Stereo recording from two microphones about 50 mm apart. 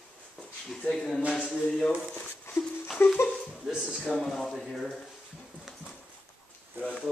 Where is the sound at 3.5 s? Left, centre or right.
Centre.